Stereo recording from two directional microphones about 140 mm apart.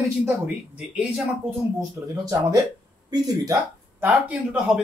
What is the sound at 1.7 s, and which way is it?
Speech, 25° right (ahead or behind).